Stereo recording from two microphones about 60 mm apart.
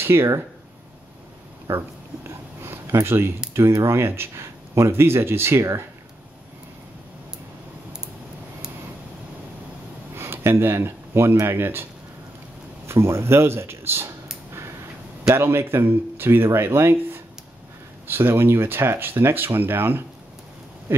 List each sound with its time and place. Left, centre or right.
0.0 s speech: right
1.7 s speech: right
10.1 s speech: right
12.8 s a sound: right
15.3 s speech: right